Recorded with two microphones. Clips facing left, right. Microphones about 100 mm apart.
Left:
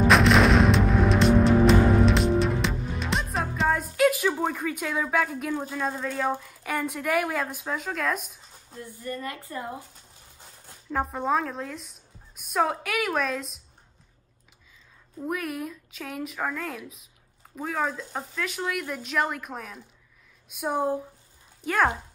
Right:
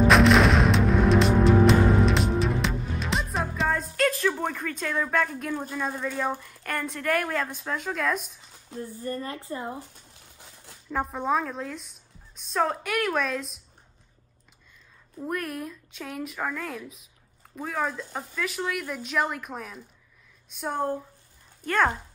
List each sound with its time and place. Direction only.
0.0 s artillery fire: centre (ahead or behind)
8.8 s a woman's voice: 35° right (ahead or behind)
10.9 s speech: centre (ahead or behind)
15.1 s speech: centre (ahead or behind)